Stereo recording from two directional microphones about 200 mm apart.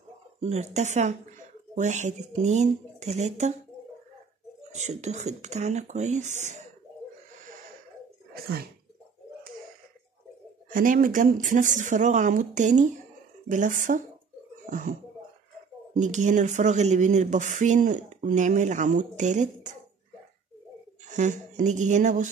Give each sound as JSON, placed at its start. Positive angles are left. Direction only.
{"t": 0.4, "sound": "speech", "side_deg": -35}
{"t": 4.7, "sound": "speech", "side_deg": -35}
{"t": 10.7, "sound": "speech", "side_deg": -45}
{"t": 16.0, "sound": "speech", "side_deg": -40}
{"t": 21.1, "sound": "speech", "side_deg": -40}